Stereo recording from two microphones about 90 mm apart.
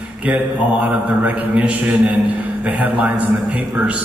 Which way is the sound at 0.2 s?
15° right (ahead or behind).